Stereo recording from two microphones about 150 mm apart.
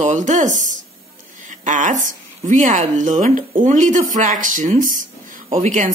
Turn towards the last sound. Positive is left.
turn(degrees=-55)  # may be behind; listen again after turning